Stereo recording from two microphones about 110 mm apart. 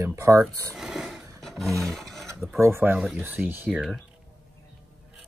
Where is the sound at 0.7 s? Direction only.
5° right (ahead or behind).